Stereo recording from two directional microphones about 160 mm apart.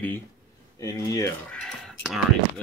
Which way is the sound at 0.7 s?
20° left (ahead or behind).